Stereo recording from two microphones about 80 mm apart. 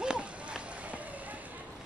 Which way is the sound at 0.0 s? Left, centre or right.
Centre.